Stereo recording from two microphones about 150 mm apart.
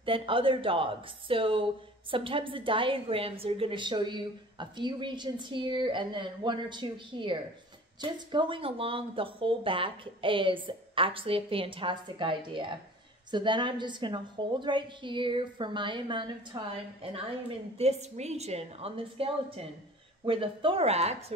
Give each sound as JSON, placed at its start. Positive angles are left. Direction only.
{"t": 0.0, "sound": "speech", "side_deg": -35}